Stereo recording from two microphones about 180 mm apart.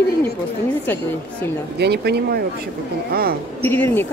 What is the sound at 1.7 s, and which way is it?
Speech, 65° right (ahead or behind).